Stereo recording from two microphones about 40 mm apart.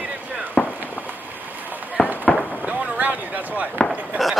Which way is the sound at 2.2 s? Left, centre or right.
Left.